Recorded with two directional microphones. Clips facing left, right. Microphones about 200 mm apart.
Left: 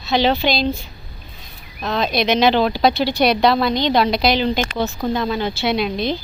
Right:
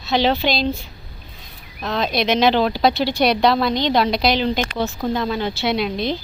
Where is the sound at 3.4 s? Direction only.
Centre (ahead or behind).